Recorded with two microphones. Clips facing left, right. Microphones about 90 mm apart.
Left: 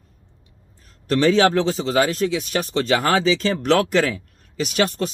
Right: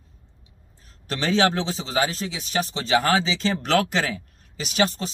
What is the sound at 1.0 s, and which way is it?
Speech, 45° left (ahead or behind).